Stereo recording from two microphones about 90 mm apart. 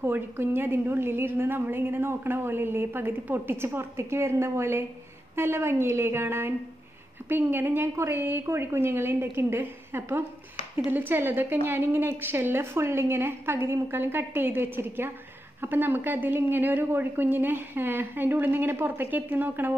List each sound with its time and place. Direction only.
0.0 s a woman's voice: 25° right (ahead or behind)